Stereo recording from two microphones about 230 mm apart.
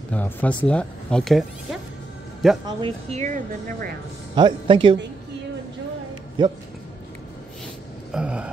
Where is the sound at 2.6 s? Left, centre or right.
Right.